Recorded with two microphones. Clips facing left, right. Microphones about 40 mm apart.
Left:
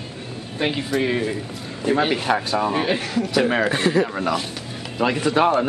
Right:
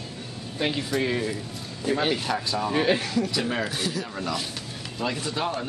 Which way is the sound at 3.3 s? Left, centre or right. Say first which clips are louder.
Left 8 dB; left.